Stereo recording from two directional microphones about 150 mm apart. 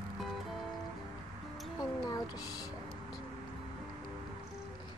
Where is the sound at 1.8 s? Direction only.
25° left (ahead or behind).